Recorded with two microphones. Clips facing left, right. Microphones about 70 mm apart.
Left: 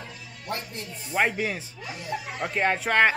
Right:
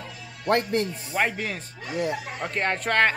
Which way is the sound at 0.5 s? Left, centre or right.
Right.